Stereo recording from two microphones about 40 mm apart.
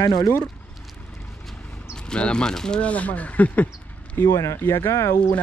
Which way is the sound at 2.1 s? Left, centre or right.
Left.